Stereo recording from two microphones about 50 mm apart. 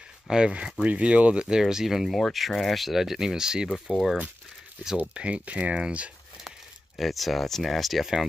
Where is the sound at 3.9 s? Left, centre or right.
Right.